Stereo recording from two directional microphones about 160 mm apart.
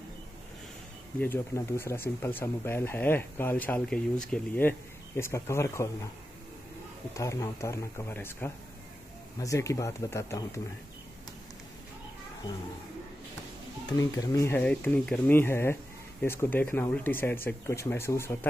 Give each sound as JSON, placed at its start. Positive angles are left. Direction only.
{"t": 1.2, "sound": "speech", "side_deg": 15}
{"t": 7.2, "sound": "speech", "side_deg": 20}
{"t": 13.8, "sound": "speech", "side_deg": 20}